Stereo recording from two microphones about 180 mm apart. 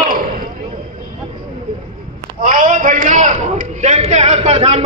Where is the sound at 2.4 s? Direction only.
50° right (ahead or behind).